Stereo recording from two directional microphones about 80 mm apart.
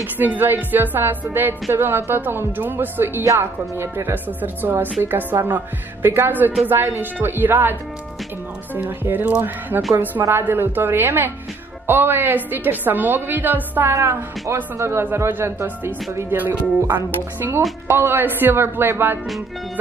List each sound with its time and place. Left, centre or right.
0.0 s speech: right
8.7 s speech: right